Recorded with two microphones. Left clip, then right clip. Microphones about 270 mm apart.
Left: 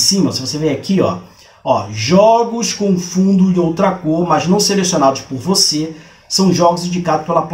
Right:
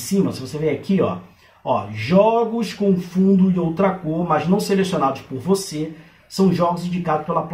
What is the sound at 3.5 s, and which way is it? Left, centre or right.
Speech, centre.